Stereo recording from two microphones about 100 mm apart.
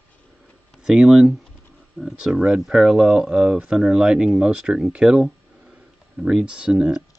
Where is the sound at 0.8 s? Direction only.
5° right (ahead or behind).